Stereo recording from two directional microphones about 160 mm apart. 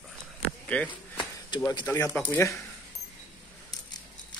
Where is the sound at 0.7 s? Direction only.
10° left (ahead or behind).